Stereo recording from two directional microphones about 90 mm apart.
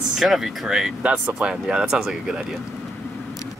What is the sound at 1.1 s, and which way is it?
Speech, 20° right (ahead or behind).